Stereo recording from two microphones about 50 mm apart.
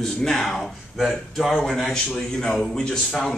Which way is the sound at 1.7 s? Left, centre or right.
Centre.